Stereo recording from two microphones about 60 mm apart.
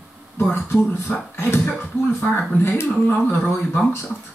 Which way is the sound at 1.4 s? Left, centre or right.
Left.